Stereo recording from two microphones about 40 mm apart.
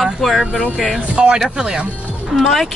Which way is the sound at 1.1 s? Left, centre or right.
Right.